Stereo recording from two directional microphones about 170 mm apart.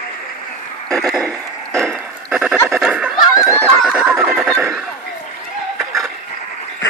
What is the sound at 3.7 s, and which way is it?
Neigh, 5° right (ahead or behind).